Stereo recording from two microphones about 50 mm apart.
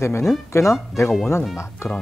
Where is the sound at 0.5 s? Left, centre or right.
Left.